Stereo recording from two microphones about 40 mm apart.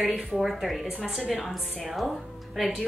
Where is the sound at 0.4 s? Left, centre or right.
Centre.